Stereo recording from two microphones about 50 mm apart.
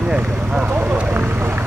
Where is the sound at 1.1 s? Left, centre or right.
Right.